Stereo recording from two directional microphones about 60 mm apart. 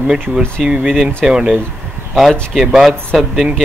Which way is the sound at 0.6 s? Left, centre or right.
Centre.